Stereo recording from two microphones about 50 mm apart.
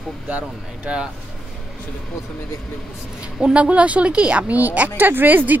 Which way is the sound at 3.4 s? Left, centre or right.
Right.